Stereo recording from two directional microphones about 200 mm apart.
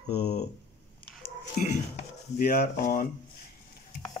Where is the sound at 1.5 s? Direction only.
40° left (ahead or behind).